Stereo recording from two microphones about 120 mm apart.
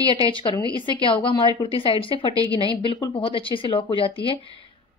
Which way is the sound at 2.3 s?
30° right (ahead or behind).